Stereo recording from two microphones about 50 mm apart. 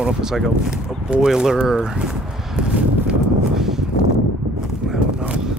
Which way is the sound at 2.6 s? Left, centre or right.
Centre.